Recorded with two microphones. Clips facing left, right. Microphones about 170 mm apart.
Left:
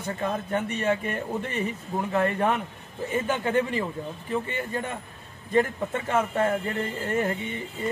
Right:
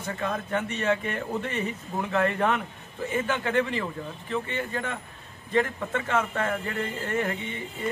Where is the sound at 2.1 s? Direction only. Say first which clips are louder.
Even; 15° left (ahead or behind).